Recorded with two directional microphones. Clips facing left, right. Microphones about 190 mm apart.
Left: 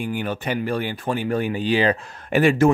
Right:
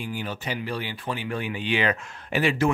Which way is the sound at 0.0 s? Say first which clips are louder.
Left 6 dB; 55° left (ahead or behind).